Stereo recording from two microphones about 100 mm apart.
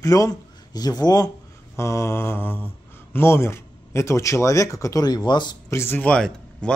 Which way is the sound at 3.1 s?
25° left (ahead or behind).